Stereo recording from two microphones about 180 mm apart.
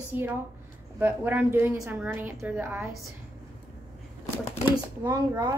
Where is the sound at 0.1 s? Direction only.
10° right (ahead or behind).